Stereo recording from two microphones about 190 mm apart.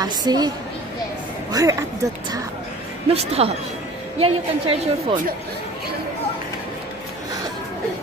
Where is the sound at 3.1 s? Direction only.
30° right (ahead or behind).